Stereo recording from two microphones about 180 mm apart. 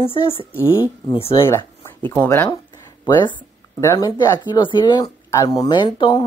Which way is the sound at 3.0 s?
25° left (ahead or behind).